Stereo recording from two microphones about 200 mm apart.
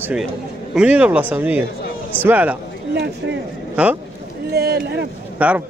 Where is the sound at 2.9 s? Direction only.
60° right (ahead or behind).